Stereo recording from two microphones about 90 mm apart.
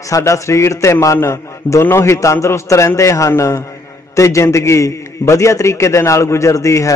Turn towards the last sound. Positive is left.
turn(degrees=35)  # may be behind; listen again after turning